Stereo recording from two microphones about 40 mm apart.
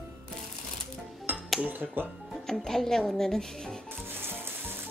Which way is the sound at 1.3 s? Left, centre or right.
Right.